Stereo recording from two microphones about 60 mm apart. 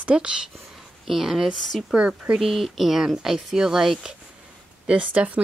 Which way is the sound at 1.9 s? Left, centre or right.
Centre.